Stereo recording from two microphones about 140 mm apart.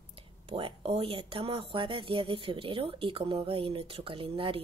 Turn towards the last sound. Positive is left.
turn(degrees=-40)  # may be behind; listen again after turning